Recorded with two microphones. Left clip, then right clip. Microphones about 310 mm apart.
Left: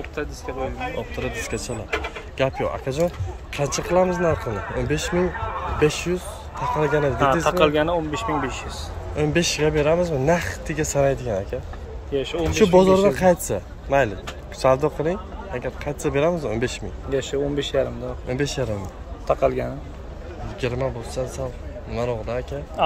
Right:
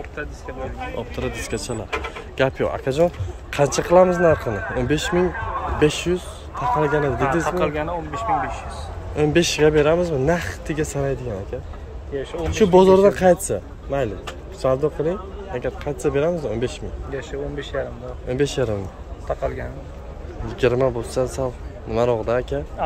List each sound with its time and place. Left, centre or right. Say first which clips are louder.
0.5 s a man's voice: left 3 dB; left
0.9 s a man's voice: even; centre
7.4 s a man's voice: left 4 dB; left
9.1 s speech: right 3 dB; centre
12.1 s a man's voice: left 3 dB; left
12.7 s speech: right 4 dB; centre
17.1 s a man's voice: left 6 dB; left
18.3 s speech: right 4 dB; centre
19.2 s a man's voice: left 5 dB; left
20.6 s a man's voice: right 7 dB; centre
22.8 s speech: left 5 dB; left